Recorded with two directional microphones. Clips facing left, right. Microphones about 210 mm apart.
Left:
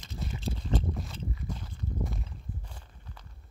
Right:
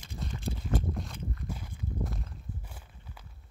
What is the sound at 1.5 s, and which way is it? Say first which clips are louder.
Walk: left 1 dB; 5° right (ahead or behind).